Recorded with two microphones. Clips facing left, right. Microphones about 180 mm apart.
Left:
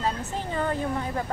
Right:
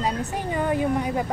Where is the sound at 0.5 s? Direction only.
10° right (ahead or behind).